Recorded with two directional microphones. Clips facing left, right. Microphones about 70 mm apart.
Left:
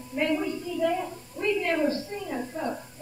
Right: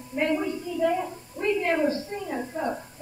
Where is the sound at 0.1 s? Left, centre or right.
Centre.